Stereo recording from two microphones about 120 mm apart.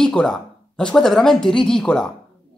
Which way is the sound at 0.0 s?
5° left (ahead or behind).